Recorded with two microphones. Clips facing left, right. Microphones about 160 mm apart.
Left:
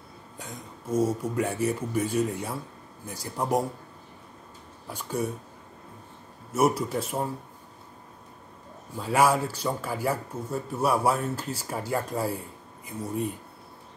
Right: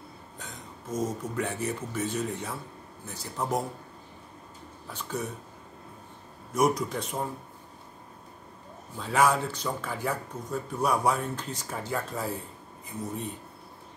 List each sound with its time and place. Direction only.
0.4 s speech: 10° left (ahead or behind)
4.8 s speech: 10° left (ahead or behind)
6.5 s speech: 5° left (ahead or behind)
8.9 s speech: 10° left (ahead or behind)